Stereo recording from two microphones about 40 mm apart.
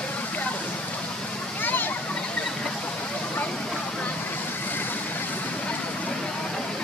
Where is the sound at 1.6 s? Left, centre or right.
Left.